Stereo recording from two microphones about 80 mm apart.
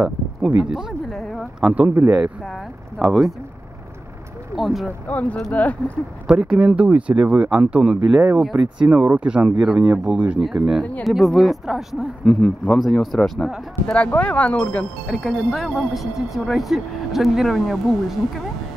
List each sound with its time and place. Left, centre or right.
0.0 s speech: centre
1.0 s a sound: centre
2.0 s speech: right
3.0 s speech: centre
4.6 s speech: centre
5.0 s speech: centre
6.2 s speech: centre
12.3 s speech: centre
12.6 s speech: centre
13.9 s speech: centre
15.0 s speech: centre